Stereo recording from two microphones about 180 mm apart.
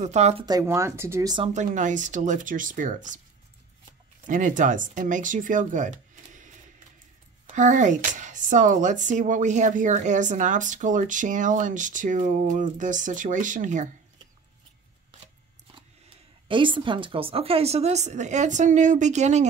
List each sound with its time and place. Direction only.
0.0 s a woman's voice: 40° right (ahead or behind)
0.5 s speech: 15° right (ahead or behind)
1.4 s speech: 40° right (ahead or behind)
4.3 s speech: 45° right (ahead or behind)
7.5 s speech: 45° right (ahead or behind)
16.4 s a woman's voice: 25° right (ahead or behind)